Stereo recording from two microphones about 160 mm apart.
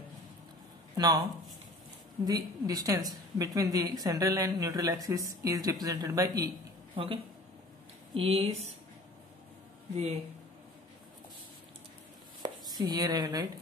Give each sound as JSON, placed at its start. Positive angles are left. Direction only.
{"t": 0.9, "sound": "speech", "side_deg": -25}
{"t": 2.2, "sound": "a woman's voice", "side_deg": -25}
{"t": 7.0, "sound": "speech", "side_deg": -30}
{"t": 8.2, "sound": "speech", "side_deg": -40}
{"t": 9.9, "sound": "speech", "side_deg": -45}
{"t": 12.4, "sound": "a sound", "side_deg": -25}
{"t": 12.9, "sound": "a woman's voice", "side_deg": -25}